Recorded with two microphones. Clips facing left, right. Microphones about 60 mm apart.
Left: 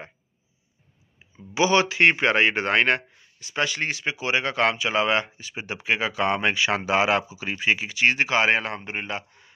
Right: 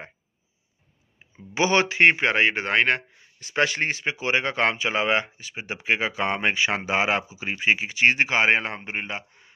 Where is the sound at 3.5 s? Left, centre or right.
Right.